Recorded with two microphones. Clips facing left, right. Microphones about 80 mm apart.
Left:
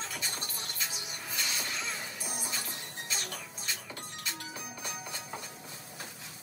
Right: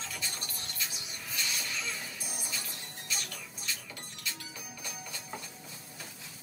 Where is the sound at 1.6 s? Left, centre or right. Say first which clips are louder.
Left 1 dB; left.